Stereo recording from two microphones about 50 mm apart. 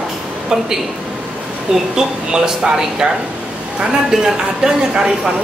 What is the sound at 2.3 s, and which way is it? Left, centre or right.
Speech, centre.